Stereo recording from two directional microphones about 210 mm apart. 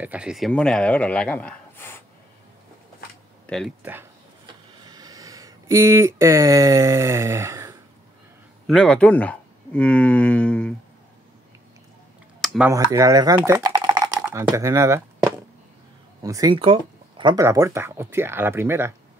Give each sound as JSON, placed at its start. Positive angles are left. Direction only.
{"t": 0.0, "sound": "a man's voice", "side_deg": -5}
{"t": 3.4, "sound": "speech", "side_deg": 5}
{"t": 4.8, "sound": "a sound", "side_deg": -15}
{"t": 8.6, "sound": "speech", "side_deg": 0}
{"t": 12.4, "sound": "a sound", "side_deg": -5}
{"t": 12.7, "sound": "speech", "side_deg": -15}